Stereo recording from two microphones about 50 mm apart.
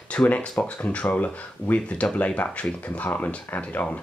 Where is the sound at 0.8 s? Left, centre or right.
Left.